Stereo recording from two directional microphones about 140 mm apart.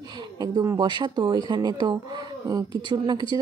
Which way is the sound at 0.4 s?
25° right (ahead or behind).